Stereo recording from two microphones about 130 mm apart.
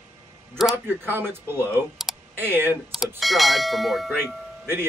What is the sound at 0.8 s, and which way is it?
Speech, 15° right (ahead or behind).